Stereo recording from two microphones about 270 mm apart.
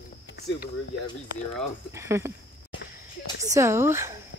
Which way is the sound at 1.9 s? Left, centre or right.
Centre.